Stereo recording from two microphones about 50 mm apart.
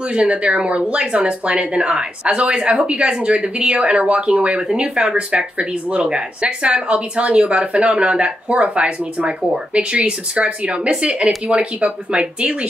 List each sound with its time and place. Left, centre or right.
0.1 s speech: right